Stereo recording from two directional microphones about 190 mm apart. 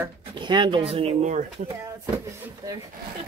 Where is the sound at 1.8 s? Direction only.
15° right (ahead or behind).